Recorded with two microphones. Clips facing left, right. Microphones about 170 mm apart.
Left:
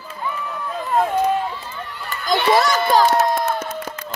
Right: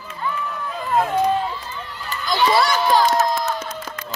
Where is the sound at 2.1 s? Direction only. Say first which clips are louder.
Left 2 dB; 55° left (ahead or behind).